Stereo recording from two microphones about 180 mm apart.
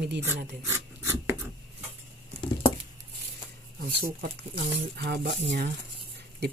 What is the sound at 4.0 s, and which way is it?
Speech, 60° right (ahead or behind).